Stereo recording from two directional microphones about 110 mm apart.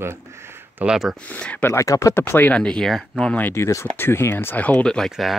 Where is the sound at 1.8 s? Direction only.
30° left (ahead or behind).